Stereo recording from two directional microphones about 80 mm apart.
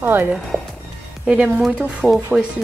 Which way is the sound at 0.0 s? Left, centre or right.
Right.